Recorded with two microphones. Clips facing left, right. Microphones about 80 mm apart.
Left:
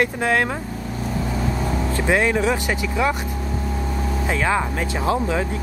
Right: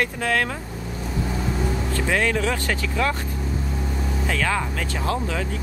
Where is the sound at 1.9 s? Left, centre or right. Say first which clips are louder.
Left 4 dB; left.